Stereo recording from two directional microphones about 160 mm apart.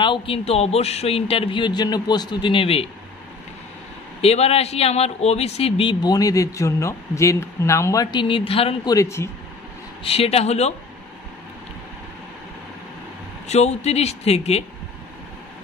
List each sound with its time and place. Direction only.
0.0 s a man's voice: 30° left (ahead or behind)
4.2 s a man's voice: 40° left (ahead or behind)
8.8 s a man's voice: 20° left (ahead or behind)
10.0 s a man's voice: 40° left (ahead or behind)
13.5 s a man's voice: 45° left (ahead or behind)